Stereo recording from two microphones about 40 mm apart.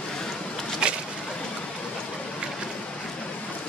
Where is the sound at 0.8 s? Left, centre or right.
Right.